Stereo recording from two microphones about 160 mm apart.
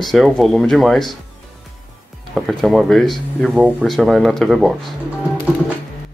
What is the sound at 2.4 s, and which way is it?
Speech, centre (ahead or behind).